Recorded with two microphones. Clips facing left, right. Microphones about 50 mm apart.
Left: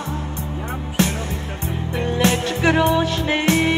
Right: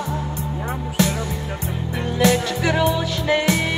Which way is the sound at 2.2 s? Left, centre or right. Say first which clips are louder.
Right 1 dB; left.